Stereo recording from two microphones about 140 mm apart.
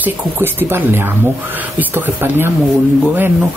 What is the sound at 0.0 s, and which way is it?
Speech, 15° right (ahead or behind).